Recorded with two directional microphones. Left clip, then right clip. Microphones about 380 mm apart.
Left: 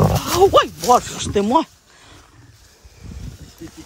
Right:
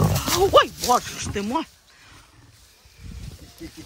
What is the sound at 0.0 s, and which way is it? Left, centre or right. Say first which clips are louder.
Speech: left 6 dB; centre.